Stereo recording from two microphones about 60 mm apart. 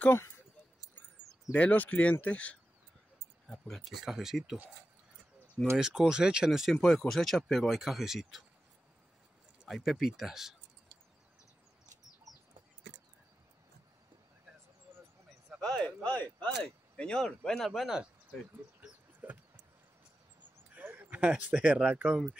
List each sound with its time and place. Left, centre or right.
1.5 s speech: left
3.4 s speech: centre
4.0 s speech: centre
5.8 s speech: centre
6.8 s speech: centre
9.7 s speech: centre
15.6 s speech: centre
17.6 s speech: centre
19.2 s a sound: right
20.8 s a sound: right
21.1 s speech: centre